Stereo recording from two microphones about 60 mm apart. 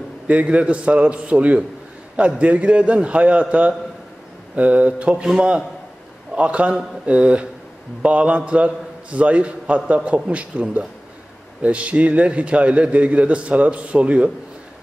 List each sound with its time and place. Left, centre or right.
0.3 s a man's voice: right